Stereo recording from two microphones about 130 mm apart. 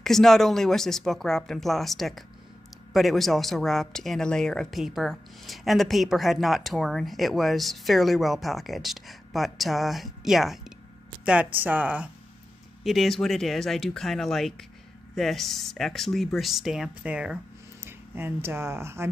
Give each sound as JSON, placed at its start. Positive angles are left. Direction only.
{"t": 0.0, "sound": "speech", "side_deg": 5}
{"t": 12.8, "sound": "speech", "side_deg": 0}